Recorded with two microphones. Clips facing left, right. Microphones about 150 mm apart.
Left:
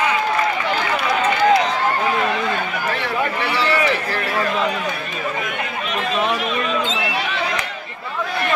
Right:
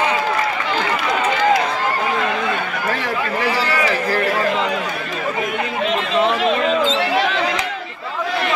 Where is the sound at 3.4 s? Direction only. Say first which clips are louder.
Right 1 dB; 40° right (ahead or behind).